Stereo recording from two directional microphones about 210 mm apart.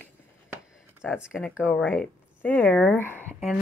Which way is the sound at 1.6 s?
5° left (ahead or behind).